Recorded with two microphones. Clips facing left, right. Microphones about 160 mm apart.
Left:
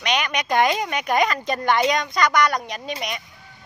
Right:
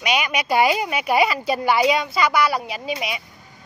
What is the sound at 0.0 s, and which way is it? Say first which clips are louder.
Speech: right 1 dB; 5° right (ahead or behind).